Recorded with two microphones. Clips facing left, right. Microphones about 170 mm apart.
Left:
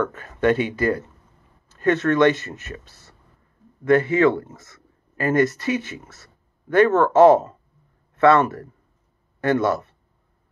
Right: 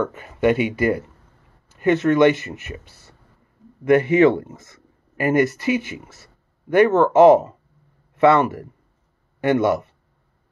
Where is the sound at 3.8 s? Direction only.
15° right (ahead or behind).